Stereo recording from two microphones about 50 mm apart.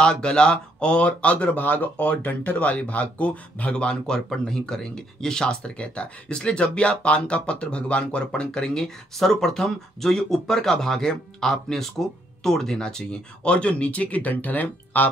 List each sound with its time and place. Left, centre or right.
0.0 s speech: centre; by 1.9 s left
2.0 s speech: left